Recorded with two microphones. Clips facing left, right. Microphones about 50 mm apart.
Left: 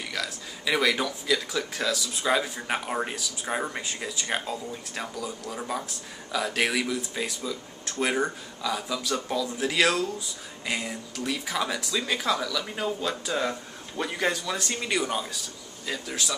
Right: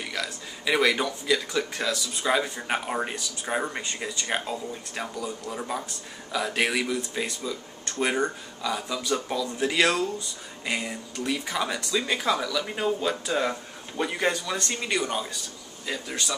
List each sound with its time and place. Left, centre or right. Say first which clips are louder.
0.1 s speech: right 1 dB; centre